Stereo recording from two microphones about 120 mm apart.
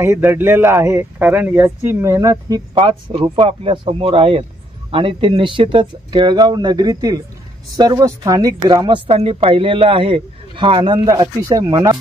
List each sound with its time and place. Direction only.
0.0 s speech: 20° right (ahead or behind)
2.8 s a man's voice: 45° right (ahead or behind)
8.8 s a man's voice: 45° right (ahead or behind)
11.1 s speech: 30° right (ahead or behind)